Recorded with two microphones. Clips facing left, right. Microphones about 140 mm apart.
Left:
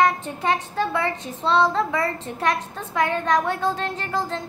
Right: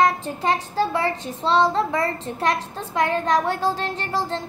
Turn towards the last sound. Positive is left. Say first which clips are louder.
# right 1 dB
turn(degrees=-30)  # may be behind; listen again after turning